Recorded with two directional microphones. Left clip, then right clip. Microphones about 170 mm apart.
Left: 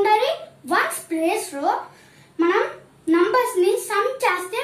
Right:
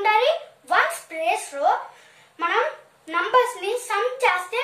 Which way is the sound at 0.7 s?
30° right (ahead or behind).